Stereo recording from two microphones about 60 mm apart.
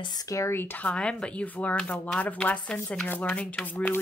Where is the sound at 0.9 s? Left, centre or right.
Centre.